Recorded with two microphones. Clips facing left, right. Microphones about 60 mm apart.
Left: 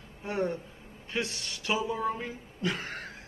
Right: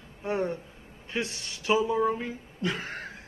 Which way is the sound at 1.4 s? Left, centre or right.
Centre.